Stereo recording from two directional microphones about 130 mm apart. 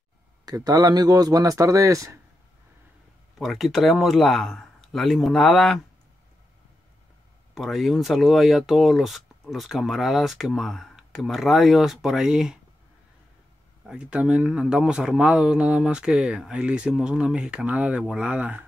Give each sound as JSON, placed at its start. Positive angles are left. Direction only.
{"t": 0.7, "sound": "speech", "side_deg": -30}
{"t": 3.3, "sound": "speech", "side_deg": 0}
{"t": 7.5, "sound": "speech", "side_deg": 0}
{"t": 13.8, "sound": "speech", "side_deg": -10}